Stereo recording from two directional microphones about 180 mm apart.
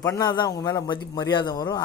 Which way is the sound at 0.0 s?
20° left (ahead or behind).